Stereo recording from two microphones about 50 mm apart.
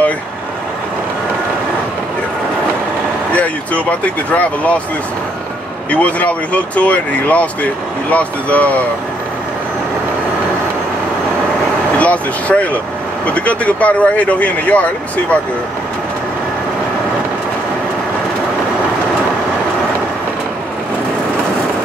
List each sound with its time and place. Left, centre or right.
3.3 s speech: left
5.9 s speech: left
12.0 s speech: left